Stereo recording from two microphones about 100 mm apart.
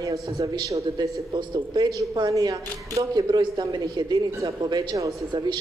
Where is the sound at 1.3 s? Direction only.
50° right (ahead or behind).